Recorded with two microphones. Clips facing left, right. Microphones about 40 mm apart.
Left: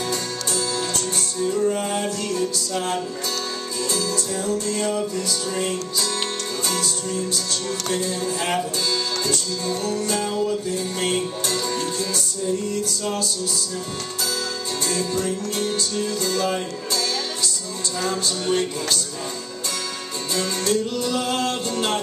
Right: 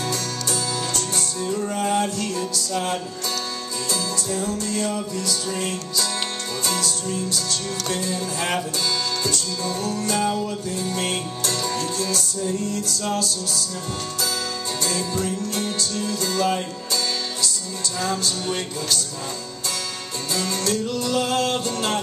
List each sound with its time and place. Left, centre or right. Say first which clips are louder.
0.5 s music: left 2 dB; centre
4.6 s music: left 2 dB; centre
7.9 s music: left 2 dB; centre
10.1 s music: even; centre
14.9 s music: left 2 dB; centre
18.0 s music: left 1 dB; centre
20.3 s music: left 2 dB; centre